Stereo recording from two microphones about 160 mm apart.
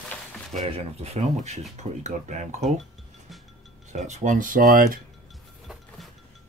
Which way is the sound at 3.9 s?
45° right (ahead or behind).